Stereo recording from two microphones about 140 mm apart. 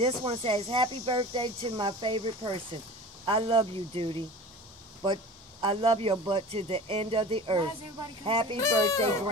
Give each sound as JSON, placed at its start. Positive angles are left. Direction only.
{"t": 0.0, "sound": "speech", "side_deg": -40}
{"t": 8.5, "sound": "speech", "side_deg": 25}